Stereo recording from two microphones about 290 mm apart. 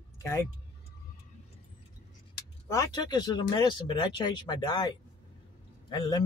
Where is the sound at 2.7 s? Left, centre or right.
Centre.